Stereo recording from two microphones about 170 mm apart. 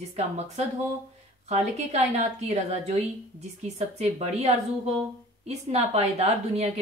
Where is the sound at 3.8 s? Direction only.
40° right (ahead or behind).